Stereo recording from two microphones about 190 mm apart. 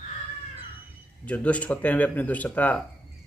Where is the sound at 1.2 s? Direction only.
5° left (ahead or behind).